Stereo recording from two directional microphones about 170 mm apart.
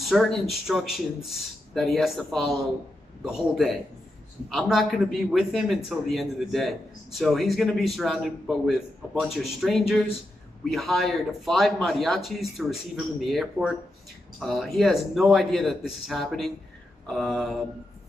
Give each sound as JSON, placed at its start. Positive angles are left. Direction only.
{"t": 0.0, "sound": "speech", "side_deg": 0}